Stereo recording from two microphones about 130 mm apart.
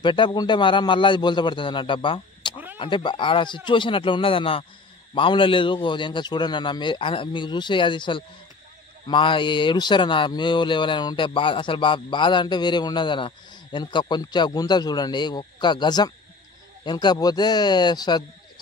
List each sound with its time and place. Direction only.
0.0 s speech: 35° left (ahead or behind)